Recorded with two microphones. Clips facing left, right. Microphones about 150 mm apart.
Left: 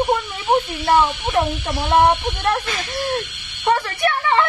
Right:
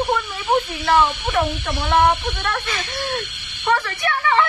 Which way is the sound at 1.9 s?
20° left (ahead or behind).